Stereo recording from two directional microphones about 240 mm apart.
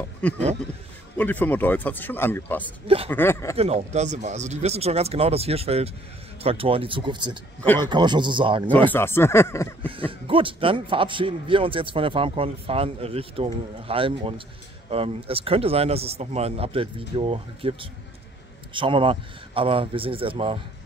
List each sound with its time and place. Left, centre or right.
0.2 s speech: centre
3.5 s a man's voice: right
7.6 s speech: centre
7.9 s a man's voice: centre
8.9 s speech: centre
9.8 s a man's voice: right